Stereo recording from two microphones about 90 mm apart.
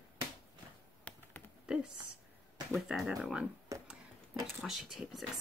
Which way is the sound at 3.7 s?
35° right (ahead or behind).